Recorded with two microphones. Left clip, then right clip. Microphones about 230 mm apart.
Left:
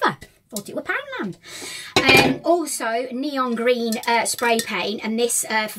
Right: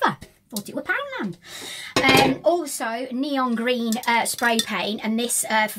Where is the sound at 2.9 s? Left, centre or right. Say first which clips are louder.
Left 2 dB; centre.